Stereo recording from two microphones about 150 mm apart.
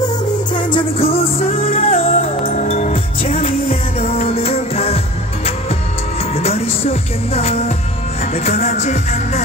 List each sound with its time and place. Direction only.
0.6 s music: 35° left (ahead or behind); by 9.4 s 50° left (ahead or behind)